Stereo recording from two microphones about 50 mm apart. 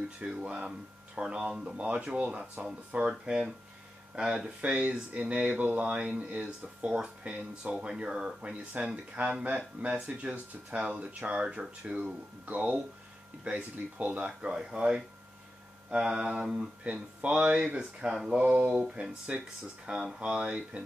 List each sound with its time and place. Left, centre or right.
0.2 s speech: centre
4.6 s speech: right; by 18.4 s centre
18.5 s speech: right